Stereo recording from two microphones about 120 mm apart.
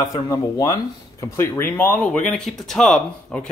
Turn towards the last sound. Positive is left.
turn(degrees=5)  # may be behind; listen again after turning